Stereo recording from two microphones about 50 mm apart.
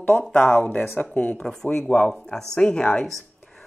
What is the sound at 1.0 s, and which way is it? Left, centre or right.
A woman's voice, left.